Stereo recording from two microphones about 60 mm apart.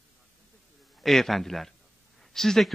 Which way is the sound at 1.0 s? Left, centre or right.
Centre.